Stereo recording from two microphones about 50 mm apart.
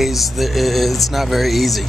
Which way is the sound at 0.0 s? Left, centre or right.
Centre.